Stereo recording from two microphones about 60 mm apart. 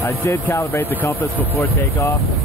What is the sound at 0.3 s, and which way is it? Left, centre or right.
Speech, left.